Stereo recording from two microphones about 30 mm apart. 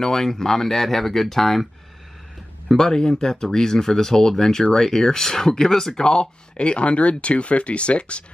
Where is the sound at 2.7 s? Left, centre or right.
Left.